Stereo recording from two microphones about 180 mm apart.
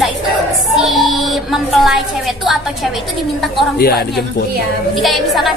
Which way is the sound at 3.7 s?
60° left (ahead or behind).